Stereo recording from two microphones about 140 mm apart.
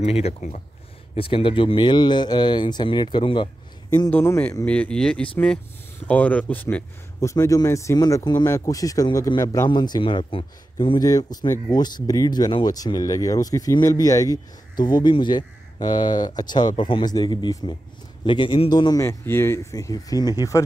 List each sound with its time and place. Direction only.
0.0 s speech: 45° left (ahead or behind)
1.1 s speech: 40° left (ahead or behind)
4.1 s speech: 15° left (ahead or behind); by 11.0 s 40° left (ahead or behind)
11.0 s speech: 25° left (ahead or behind)